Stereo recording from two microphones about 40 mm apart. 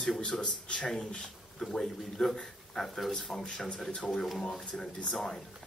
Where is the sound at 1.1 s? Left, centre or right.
Centre.